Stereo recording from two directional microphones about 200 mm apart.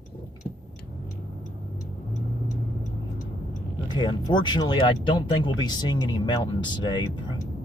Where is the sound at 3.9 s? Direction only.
20° left (ahead or behind).